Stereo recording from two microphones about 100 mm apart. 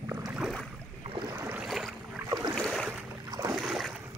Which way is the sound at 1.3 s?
25° right (ahead or behind).